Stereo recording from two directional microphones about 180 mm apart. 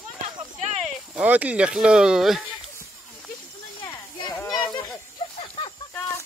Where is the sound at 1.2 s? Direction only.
10° right (ahead or behind).